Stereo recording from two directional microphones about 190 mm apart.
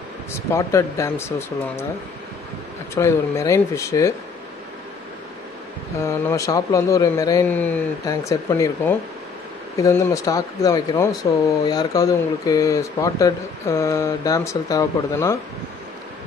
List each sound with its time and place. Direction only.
0.3 s speech: 15° left (ahead or behind)
2.9 s speech: 15° left (ahead or behind)
6.0 s speech: 15° left (ahead or behind)